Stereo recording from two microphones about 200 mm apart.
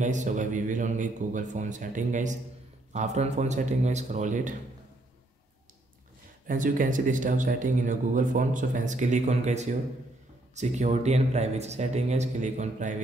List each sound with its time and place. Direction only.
0.0 s speech: 35° right (ahead or behind)
6.4 s speech: 40° right (ahead or behind)